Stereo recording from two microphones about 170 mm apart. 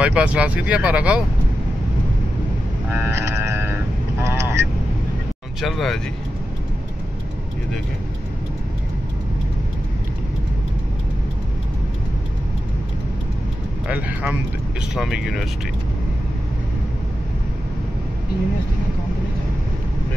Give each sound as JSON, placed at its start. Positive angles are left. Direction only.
{"t": 0.0, "sound": "speech", "side_deg": -5}
{"t": 2.9, "sound": "livestock", "side_deg": -15}
{"t": 4.2, "sound": "vehicle", "side_deg": -15}
{"t": 5.6, "sound": "speech", "side_deg": 0}
{"t": 13.8, "sound": "speech", "side_deg": -5}